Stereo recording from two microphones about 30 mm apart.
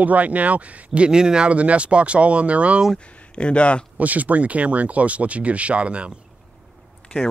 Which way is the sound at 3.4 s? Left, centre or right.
Left.